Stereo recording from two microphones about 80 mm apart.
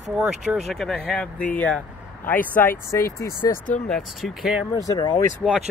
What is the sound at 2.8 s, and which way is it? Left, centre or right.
Speech, left.